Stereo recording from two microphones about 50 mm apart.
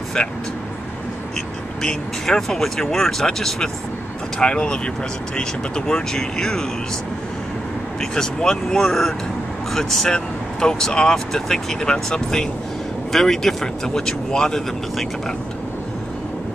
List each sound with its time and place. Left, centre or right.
1.8 s speech: centre
8.0 s speech: centre